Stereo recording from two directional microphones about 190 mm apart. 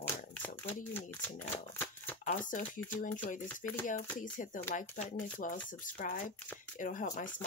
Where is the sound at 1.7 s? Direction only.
10° left (ahead or behind).